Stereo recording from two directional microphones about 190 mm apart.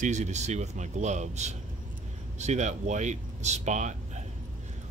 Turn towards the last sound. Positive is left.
turn(degrees=-40)  # may be behind; listen again after turning